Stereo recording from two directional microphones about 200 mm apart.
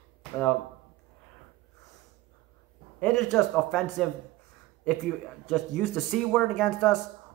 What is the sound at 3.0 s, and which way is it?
Speech, 5° left (ahead or behind).